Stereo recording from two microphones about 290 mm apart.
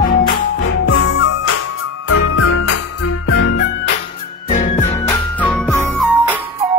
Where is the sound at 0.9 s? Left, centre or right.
Left.